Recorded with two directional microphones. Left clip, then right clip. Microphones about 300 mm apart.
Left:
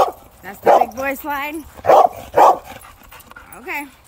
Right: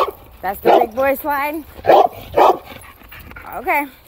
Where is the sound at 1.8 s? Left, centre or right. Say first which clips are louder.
Even; left.